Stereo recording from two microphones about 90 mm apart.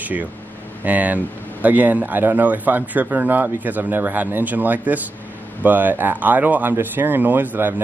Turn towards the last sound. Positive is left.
turn(degrees=-20)  # may be behind; listen again after turning